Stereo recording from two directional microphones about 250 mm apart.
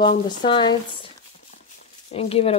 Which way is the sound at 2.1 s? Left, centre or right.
Left.